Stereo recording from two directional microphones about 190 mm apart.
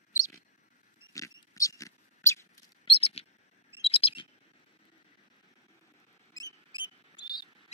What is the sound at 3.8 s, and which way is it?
Bird, 30° left (ahead or behind).